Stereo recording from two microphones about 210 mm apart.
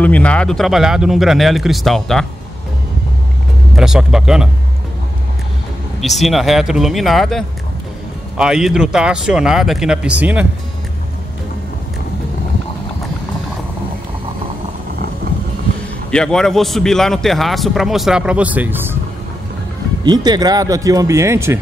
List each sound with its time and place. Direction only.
0.0 s a man's voice: 5° left (ahead or behind)
3.7 s a man's voice: centre (ahead or behind)
5.9 s a man's voice: centre (ahead or behind)
16.1 s a man's voice: 5° left (ahead or behind)
20.0 s speech: 20° right (ahead or behind)